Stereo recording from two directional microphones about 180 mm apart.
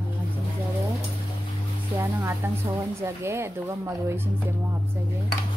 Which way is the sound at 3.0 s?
15° right (ahead or behind).